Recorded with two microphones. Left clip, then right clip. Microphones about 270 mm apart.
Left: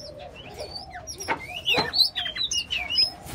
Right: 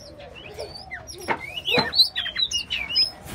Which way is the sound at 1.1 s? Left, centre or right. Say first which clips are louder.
Right 2 dB; right.